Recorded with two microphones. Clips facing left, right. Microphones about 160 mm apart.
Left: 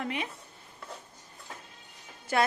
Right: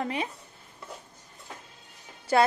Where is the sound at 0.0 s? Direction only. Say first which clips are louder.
Right 3 dB; 35° right (ahead or behind).